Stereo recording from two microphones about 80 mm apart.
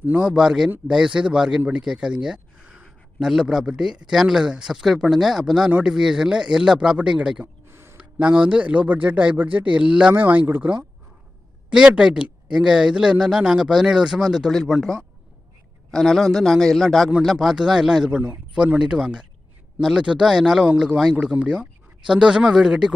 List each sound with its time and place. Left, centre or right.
0.2 s a man's voice: centre
7.6 s a sound: right
8.0 s a man's voice: centre
11.7 s a man's voice: centre